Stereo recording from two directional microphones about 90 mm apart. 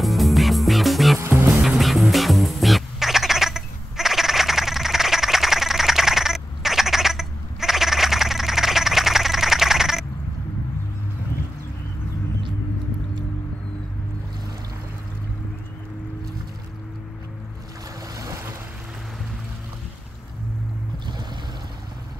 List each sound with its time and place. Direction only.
0.0 s music: centre (ahead or behind)
18.1 s boat: 35° right (ahead or behind)